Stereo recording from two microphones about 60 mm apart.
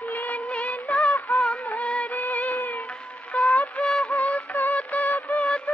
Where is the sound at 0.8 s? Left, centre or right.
Centre.